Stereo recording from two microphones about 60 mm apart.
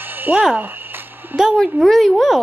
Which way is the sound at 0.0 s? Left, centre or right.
Right.